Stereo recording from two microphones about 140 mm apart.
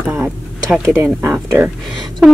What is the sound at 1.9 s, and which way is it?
Speech, centre (ahead or behind).